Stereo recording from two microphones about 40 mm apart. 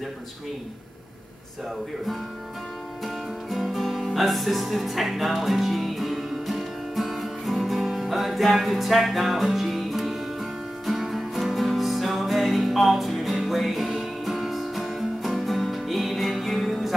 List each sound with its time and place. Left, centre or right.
3.4 s music: centre